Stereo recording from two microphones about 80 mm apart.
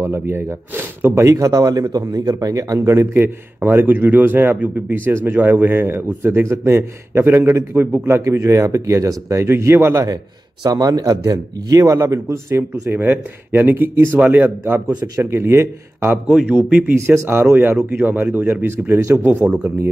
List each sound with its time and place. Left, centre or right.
0.0 s speech: right
10.6 s a man's voice: right
12.9 s speech: right
15.1 s speech: right
16.3 s a man's voice: centre
16.9 s speech: right; by 19.7 s centre